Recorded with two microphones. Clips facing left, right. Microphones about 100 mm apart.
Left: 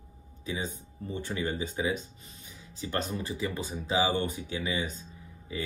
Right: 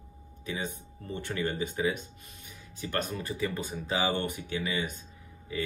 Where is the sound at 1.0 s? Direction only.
15° left (ahead or behind).